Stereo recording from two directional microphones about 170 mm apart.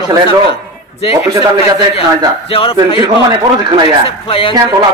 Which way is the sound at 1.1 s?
20° right (ahead or behind).